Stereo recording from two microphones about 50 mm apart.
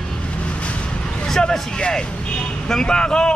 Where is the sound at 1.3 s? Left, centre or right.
Centre.